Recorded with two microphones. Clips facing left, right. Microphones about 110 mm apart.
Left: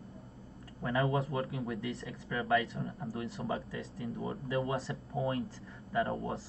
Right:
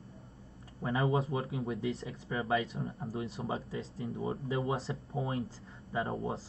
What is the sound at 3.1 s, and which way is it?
Speech, 30° right (ahead or behind).